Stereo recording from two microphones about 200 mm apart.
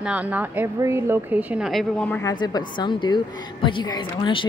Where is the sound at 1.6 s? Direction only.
5° left (ahead or behind).